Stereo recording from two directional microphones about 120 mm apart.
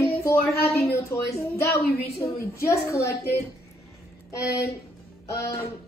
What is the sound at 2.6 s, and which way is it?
Speech, 25° left (ahead or behind).